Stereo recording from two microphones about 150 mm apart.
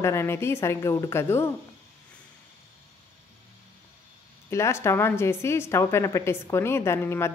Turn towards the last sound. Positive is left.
turn(degrees=15)  # may be behind; listen again after turning